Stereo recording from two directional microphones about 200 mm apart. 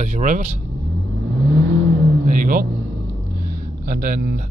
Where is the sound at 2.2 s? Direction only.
40° right (ahead or behind).